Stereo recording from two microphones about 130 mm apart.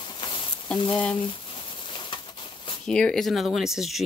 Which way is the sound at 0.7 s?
35° left (ahead or behind).